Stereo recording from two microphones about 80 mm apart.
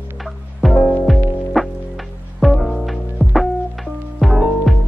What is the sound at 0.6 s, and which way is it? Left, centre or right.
Music, centre.